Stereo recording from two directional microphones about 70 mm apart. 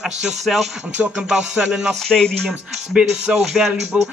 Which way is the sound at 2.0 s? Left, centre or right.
Centre.